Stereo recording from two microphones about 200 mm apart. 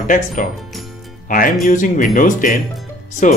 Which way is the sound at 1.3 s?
45° left (ahead or behind).